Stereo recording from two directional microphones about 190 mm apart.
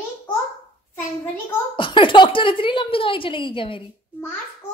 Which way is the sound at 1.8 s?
25° left (ahead or behind).